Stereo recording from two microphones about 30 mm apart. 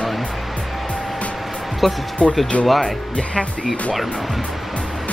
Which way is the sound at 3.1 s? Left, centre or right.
Left.